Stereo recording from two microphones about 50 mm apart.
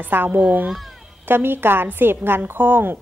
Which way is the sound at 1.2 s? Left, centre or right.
Right.